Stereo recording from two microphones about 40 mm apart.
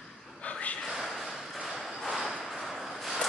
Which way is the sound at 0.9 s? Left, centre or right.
Centre.